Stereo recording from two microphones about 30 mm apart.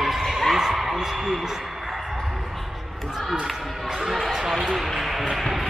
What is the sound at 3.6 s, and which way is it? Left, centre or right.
Speech, centre.